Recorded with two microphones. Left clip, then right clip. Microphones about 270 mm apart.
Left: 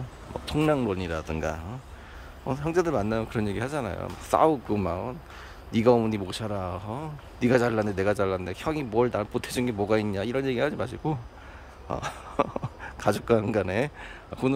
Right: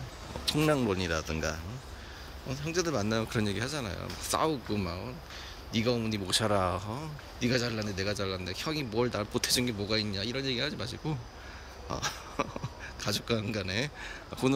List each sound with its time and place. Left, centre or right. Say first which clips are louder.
0.5 s speech: left 3 dB; centre
11.9 s speech: left 3 dB; centre